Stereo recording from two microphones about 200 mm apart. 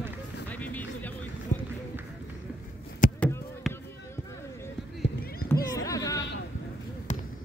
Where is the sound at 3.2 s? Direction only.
10° left (ahead or behind).